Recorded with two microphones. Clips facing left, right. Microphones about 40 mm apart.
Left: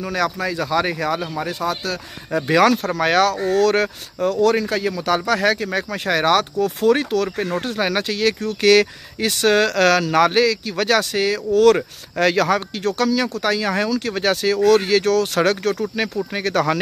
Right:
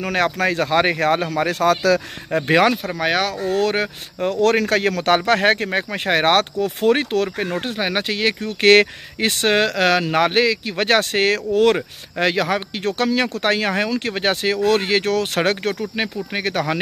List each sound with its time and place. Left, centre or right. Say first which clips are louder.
0.0 s speech: right 3 dB; right
2.3 s speech: even; right
2.9 s speech: left 3 dB; centre
4.4 s speech: right 1 dB; right
4.6 s speech: right 3 dB; right
11.5 s speech: left 6 dB; right
12.7 s speech: even; right